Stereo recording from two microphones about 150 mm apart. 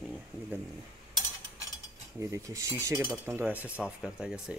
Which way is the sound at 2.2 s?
20° right (ahead or behind).